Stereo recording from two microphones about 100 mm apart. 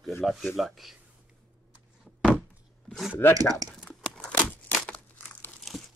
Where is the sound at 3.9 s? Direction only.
10° left (ahead or behind).